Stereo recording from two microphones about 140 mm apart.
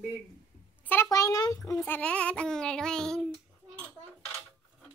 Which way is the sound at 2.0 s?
10° left (ahead or behind).